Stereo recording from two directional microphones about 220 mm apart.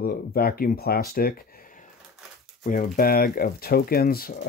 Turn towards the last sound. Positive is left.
turn(degrees=40)  # may be behind; listen again after turning